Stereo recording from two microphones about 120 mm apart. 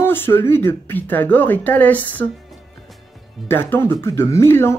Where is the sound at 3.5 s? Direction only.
20° left (ahead or behind).